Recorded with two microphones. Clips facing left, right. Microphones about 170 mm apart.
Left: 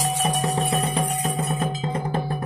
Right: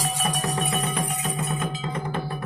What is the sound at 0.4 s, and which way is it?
Music, 30° left (ahead or behind).